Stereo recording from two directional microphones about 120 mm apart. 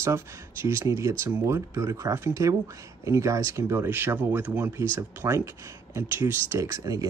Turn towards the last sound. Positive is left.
turn(degrees=-30)  # may be behind; listen again after turning